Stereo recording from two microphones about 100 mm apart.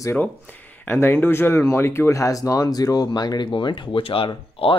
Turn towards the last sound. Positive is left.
turn(degrees=65)  # may be behind; listen again after turning